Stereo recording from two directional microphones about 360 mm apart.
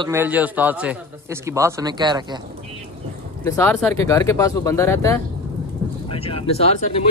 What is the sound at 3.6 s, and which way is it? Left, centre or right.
Speech, centre.